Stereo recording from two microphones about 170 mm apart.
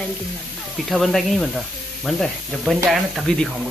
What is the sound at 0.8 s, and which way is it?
Speech, centre (ahead or behind).